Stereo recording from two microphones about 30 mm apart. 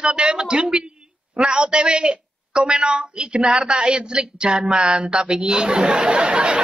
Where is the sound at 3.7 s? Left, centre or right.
Right.